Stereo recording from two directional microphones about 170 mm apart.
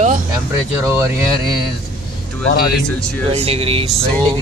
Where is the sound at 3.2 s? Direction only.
35° right (ahead or behind).